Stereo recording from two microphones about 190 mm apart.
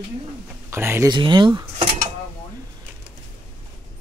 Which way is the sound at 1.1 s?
25° right (ahead or behind).